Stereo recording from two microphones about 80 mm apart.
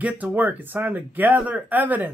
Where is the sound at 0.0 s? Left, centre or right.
Right.